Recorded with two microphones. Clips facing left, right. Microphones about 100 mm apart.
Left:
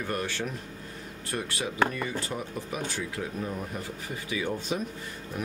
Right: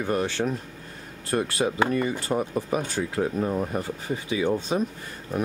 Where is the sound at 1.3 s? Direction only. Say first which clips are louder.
Right 8 dB; 40° right (ahead or behind).